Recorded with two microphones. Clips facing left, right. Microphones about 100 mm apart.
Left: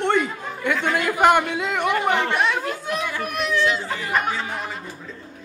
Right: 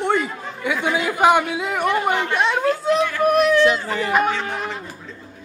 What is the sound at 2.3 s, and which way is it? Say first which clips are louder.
Speech: right 3 dB; 25° right (ahead or behind).